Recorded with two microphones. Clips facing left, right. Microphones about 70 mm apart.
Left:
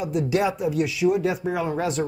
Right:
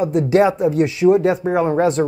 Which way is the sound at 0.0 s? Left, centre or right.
Right.